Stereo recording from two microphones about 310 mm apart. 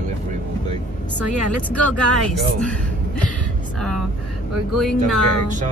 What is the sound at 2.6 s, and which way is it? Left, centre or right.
Speech, centre.